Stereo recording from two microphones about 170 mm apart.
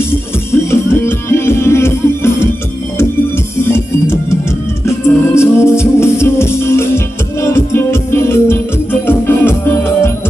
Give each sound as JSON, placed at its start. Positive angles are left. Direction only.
{"t": 0.7, "sound": "music", "side_deg": 15}
{"t": 3.6, "sound": "music", "side_deg": 15}